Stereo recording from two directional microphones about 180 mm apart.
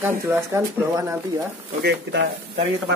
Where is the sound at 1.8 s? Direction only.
75° right (ahead or behind).